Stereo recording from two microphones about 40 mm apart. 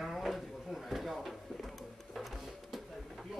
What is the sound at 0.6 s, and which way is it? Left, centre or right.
Drawer open or close, centre.